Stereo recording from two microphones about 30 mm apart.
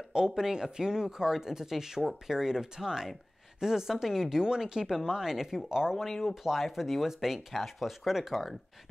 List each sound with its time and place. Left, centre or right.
0.1 s speech: centre
6.0 s speech: centre
6.4 s speech: centre